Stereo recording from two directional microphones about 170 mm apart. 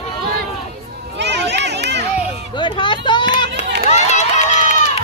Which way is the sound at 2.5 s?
30° left (ahead or behind).